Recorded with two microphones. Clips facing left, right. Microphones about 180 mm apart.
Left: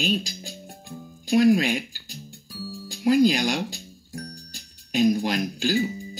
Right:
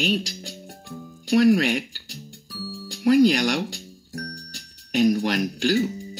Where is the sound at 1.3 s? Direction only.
70° right (ahead or behind).